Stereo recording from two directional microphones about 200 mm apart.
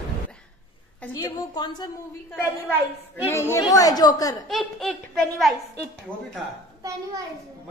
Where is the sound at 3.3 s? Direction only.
15° left (ahead or behind).